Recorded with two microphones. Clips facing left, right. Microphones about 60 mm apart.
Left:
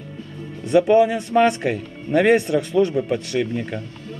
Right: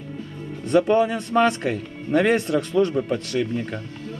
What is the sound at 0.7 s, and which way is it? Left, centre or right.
Speech, centre.